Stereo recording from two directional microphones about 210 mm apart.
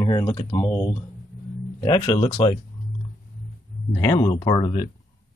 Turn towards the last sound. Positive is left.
turn(degrees=25)  # may be behind; listen again after turning